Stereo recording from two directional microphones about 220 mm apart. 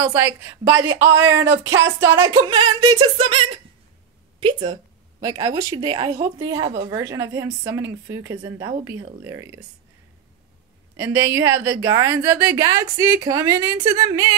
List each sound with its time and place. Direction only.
0.0 s a woman's voice: 10° right (ahead or behind)
1.0 s speech: 60° right (ahead or behind)
2.1 s a woman's voice: 20° right (ahead or behind)
11.0 s a woman's voice: 10° right (ahead or behind)